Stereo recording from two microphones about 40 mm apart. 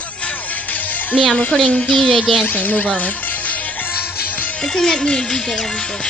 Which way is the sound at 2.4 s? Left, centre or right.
Left.